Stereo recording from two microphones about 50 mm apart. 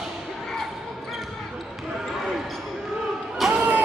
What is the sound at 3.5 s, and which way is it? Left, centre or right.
Vehicle, right.